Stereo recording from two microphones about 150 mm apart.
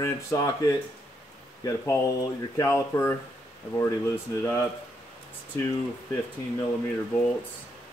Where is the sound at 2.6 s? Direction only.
15° left (ahead or behind).